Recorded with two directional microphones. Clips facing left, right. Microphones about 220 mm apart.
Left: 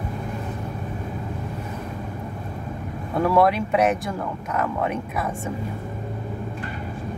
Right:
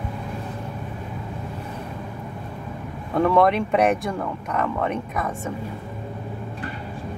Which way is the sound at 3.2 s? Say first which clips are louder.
Right 1 dB; 5° left (ahead or behind).